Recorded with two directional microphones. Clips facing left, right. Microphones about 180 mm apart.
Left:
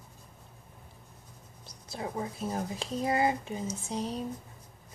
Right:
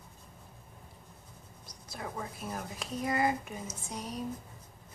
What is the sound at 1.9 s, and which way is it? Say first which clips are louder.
A woman's voice: left 5 dB; 25° left (ahead or behind).